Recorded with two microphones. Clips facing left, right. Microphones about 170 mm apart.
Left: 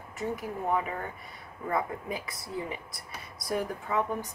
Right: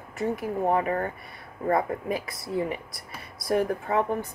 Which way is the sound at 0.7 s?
55° right (ahead or behind).